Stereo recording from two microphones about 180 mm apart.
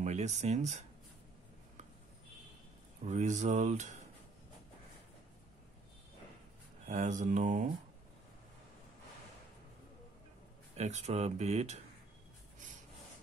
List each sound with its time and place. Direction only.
0.0 s speech: 40° right (ahead or behind)
3.1 s speech: 40° right (ahead or behind)
6.9 s speech: 40° right (ahead or behind)
10.8 s speech: 40° right (ahead or behind)